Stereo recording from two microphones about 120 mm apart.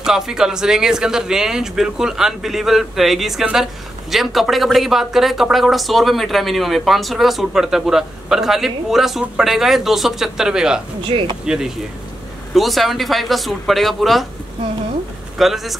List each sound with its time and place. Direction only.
0.0 s a man's voice: 5° right (ahead or behind)
11.1 s speech: 45° right (ahead or behind)
11.4 s a man's voice: 5° right (ahead or behind)
15.3 s a man's voice: centre (ahead or behind)